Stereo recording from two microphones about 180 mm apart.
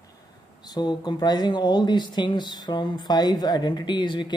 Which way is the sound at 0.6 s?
25° left (ahead or behind).